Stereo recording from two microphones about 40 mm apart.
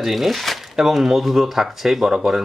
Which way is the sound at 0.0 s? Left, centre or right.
Centre.